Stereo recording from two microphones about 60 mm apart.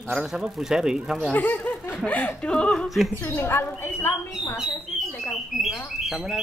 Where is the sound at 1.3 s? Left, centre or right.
Left.